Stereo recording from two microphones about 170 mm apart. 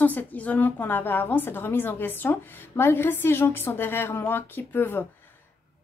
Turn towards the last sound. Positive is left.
turn(degrees=10)  # may be behind; listen again after turning